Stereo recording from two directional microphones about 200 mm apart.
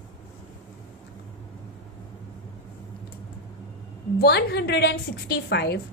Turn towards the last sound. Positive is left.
turn(degrees=55)  # may be behind; listen again after turning